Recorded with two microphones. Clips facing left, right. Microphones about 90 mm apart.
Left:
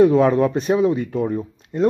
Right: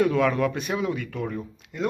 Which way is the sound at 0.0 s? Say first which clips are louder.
Left 7 dB; 30° left (ahead or behind).